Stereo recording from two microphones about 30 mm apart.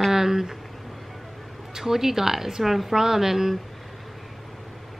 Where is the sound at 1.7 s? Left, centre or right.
Centre.